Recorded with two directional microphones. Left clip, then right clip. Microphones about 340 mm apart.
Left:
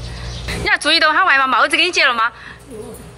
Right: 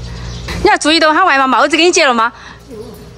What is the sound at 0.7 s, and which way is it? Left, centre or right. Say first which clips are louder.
Speech: right 4 dB; centre.